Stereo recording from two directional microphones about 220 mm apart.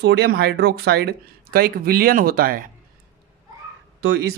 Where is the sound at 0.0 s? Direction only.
50° right (ahead or behind).